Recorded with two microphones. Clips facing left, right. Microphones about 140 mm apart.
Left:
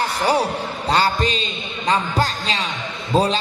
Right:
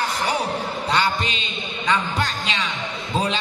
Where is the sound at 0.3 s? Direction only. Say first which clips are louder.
Left 4 dB; 35° left (ahead or behind).